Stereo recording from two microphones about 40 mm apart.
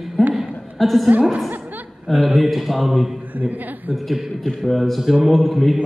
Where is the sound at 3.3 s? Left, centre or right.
Right.